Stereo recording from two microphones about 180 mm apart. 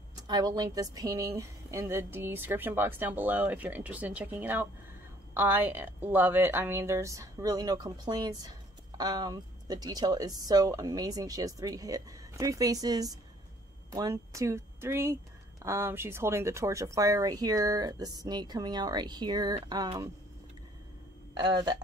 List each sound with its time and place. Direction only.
0.1 s a woman's voice: 20° right (ahead or behind)
21.4 s a woman's voice: 25° right (ahead or behind)